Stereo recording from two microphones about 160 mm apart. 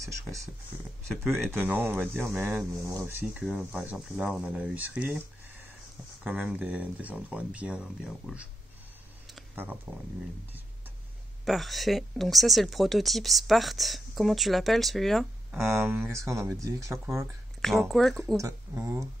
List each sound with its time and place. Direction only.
1.0 s speech: centre (ahead or behind)
1.5 s speech: 10° right (ahead or behind)
9.9 s speech: 10° right (ahead or behind)
11.4 s speech: centre (ahead or behind)
15.8 s speech: 15° right (ahead or behind)
17.6 s speech: centre (ahead or behind)
18.3 s speech: 20° right (ahead or behind)